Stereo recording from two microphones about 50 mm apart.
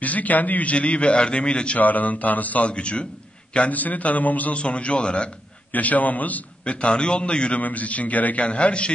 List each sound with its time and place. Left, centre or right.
0.0 s a man's voice: left
1.8 s a man's voice: left
5.7 s a man's voice: left